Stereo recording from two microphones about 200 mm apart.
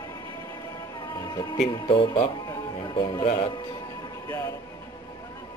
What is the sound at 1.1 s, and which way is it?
Speech, 20° left (ahead or behind).